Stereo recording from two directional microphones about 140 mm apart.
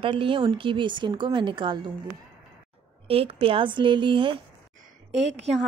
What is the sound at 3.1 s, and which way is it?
A woman's voice, 45° right (ahead or behind).